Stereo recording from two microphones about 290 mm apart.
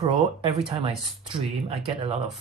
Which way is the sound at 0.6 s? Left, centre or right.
Centre.